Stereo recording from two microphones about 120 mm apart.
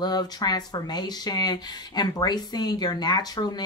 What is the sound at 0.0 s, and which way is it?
A woman's voice, 35° left (ahead or behind).